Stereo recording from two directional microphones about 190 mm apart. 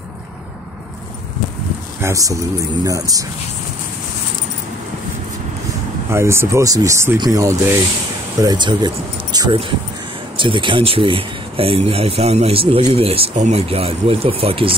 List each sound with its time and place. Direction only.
2.0 s speech: 15° right (ahead or behind)
6.0 s speech: 15° right (ahead or behind); by 14.8 s 30° right (ahead or behind)